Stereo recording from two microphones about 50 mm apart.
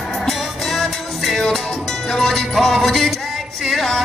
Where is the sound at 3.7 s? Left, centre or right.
Centre.